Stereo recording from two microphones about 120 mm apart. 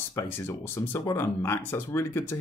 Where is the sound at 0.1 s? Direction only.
20° left (ahead or behind).